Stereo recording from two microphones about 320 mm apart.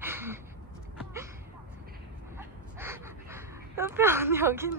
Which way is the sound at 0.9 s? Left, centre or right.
Centre.